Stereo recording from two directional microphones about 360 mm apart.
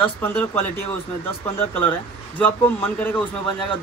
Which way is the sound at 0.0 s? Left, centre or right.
Centre.